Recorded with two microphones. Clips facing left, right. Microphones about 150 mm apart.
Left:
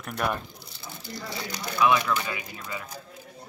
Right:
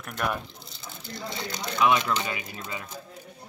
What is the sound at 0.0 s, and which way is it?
Speech, centre (ahead or behind).